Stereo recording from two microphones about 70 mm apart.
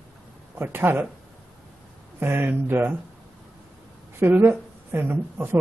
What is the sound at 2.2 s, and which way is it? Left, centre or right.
Speech, right.